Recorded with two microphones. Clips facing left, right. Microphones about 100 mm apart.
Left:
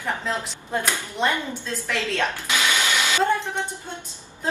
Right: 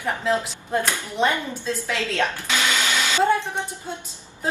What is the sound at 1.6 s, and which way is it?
Speech, 15° right (ahead or behind).